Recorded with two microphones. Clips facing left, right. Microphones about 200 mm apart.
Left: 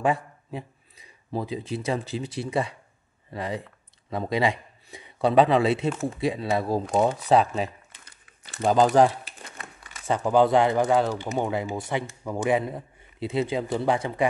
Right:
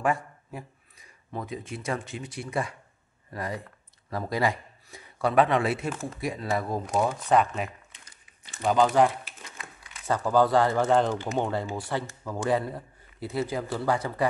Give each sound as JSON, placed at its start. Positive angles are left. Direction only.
{"t": 0.0, "sound": "a sound", "side_deg": 25}
{"t": 1.3, "sound": "a man's voice", "side_deg": 30}
{"t": 5.9, "sound": "speech", "side_deg": 0}
{"t": 6.2, "sound": "speech", "side_deg": 15}
{"t": 6.9, "sound": "speech", "side_deg": 0}
{"t": 7.2, "sound": "speech", "side_deg": 30}
{"t": 8.5, "sound": "speech", "side_deg": 45}
{"t": 10.0, "sound": "speech", "side_deg": 20}